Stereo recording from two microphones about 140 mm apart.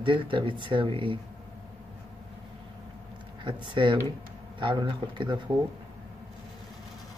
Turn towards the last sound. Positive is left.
turn(degrees=-35)  # may be behind; listen again after turning